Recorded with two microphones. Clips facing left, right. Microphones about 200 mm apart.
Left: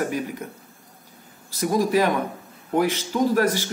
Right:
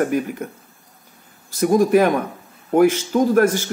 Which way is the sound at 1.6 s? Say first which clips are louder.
Right 6 dB; 50° right (ahead or behind).